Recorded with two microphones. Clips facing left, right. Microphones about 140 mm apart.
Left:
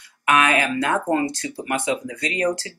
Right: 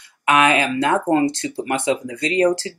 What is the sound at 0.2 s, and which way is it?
Speech, 25° right (ahead or behind).